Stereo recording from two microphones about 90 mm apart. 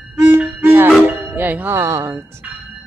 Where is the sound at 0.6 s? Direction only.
25° right (ahead or behind).